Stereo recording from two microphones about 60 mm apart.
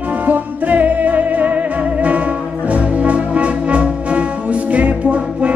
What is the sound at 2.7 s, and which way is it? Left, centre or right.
Brass instrument, right.